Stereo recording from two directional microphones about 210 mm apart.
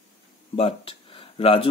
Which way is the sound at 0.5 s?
25° left (ahead or behind).